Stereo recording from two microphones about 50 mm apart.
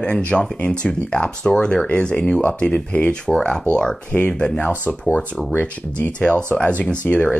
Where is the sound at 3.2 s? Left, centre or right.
Centre; by 4.9 s left.